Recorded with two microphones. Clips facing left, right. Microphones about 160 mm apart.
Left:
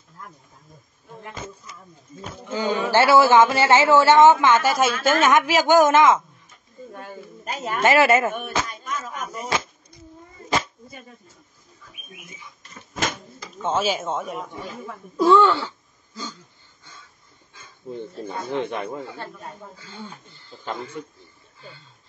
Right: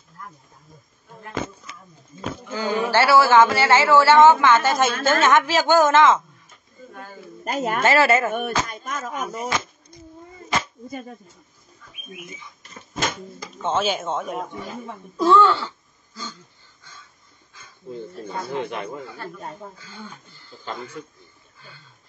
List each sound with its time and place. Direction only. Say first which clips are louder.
1.3 s speech: right 10 dB; 90° right
2.4 s speech: left 1 dB; 20° left (ahead or behind)
4.8 s a woman's voice: even; 45° right (ahead or behind)
5.2 s speech: even; 15° left (ahead or behind)
7.4 s a woman's voice: right 4 dB; 50° right (ahead or behind)
7.8 s speech: left 2 dB; 15° left (ahead or behind)
8.4 s speech: right 2 dB; 50° right (ahead or behind)
10.9 s a woman's voice: right 9 dB; 45° right (ahead or behind)
13.6 s speech: even; 5° left (ahead or behind)
15.1 s speech: left 1 dB; 15° left (ahead or behind)
18.1 s speech: left 1 dB; 25° left (ahead or behind)